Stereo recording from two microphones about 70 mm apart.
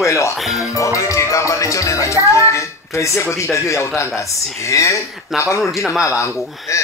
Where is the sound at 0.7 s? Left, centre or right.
Left.